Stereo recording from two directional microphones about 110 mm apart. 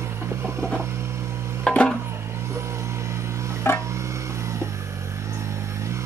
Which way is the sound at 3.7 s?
20° left (ahead or behind).